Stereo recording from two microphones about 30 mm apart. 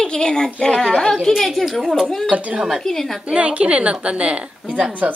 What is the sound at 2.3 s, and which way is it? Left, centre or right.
Speech, right.